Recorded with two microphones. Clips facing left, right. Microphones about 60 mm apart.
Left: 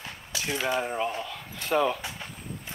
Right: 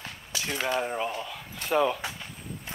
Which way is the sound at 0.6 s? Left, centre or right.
Centre.